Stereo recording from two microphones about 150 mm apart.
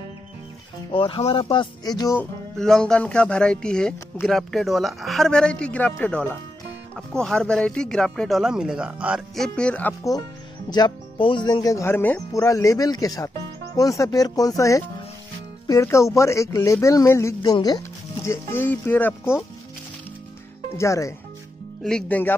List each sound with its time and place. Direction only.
0.9 s speech: 35° left (ahead or behind)
2.5 s speech: 5° left (ahead or behind)
10.7 s speech: 30° left (ahead or behind); by 19.4 s 15° left (ahead or behind)
20.7 s speech: 20° left (ahead or behind)
21.8 s speech: 5° left (ahead or behind)